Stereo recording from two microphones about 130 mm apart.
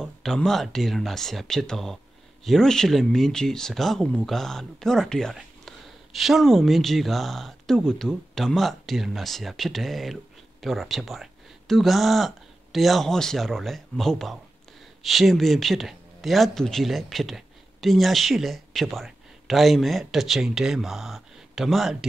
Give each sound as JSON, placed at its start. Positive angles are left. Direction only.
{"t": 0.0, "sound": "speech", "side_deg": 5}